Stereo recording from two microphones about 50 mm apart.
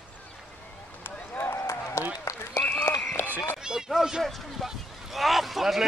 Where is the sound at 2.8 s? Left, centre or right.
Left.